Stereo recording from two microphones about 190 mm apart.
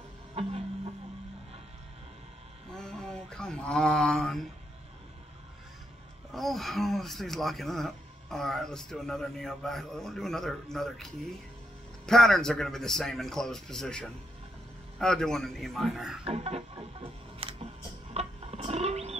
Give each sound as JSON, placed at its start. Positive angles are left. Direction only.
{"t": 0.3, "sound": "music", "side_deg": -30}
{"t": 2.7, "sound": "a sound", "side_deg": 5}
{"t": 6.3, "sound": "speech", "side_deg": 0}
{"t": 12.1, "sound": "a man's voice", "side_deg": 0}
{"t": 16.3, "sound": "music", "side_deg": -35}